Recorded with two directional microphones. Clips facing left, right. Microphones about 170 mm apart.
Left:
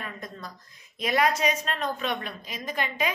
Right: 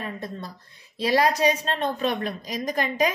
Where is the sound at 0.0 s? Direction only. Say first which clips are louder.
Right 5 dB; 30° right (ahead or behind).